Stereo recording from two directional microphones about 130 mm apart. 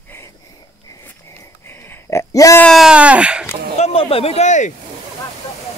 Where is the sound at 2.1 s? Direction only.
25° left (ahead or behind).